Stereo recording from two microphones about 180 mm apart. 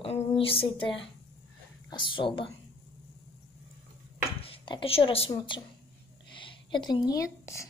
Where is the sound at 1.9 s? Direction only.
25° left (ahead or behind).